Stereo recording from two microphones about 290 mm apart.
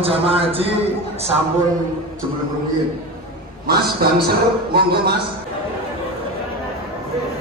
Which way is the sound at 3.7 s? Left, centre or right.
Right.